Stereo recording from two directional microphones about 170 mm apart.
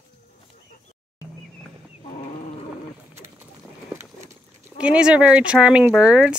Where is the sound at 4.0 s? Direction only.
15° right (ahead or behind).